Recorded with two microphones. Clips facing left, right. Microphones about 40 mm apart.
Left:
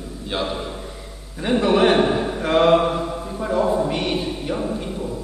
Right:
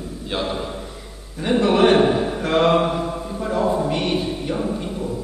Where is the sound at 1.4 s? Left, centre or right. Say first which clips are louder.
Right 1 dB; centre.